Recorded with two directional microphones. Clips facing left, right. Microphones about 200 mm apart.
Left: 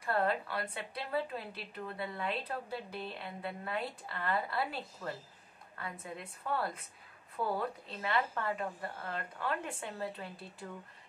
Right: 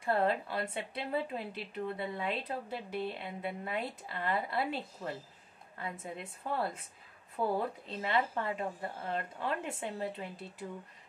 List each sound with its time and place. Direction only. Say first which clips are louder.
0.0 s a woman's voice: right 2 dB; 25° right (ahead or behind)
8.0 s a woman's voice: right 2 dB; 25° right (ahead or behind)